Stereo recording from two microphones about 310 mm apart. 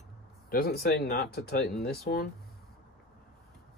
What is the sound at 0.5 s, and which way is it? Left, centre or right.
Speech, left.